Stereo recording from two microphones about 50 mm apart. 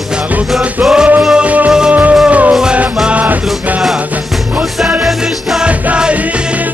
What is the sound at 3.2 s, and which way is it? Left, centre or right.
Music, right.